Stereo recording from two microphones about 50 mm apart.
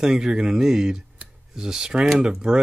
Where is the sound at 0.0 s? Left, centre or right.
Centre.